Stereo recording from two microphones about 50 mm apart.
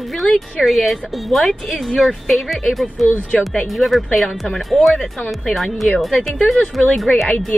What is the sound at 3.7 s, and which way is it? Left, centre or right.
A woman's voice, centre.